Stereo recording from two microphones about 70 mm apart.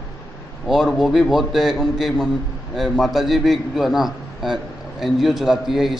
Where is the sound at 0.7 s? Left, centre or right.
Centre.